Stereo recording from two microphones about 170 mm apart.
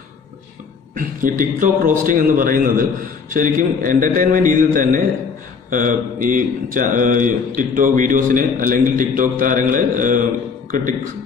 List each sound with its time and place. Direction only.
0.9 s a man's voice: 50° right (ahead or behind)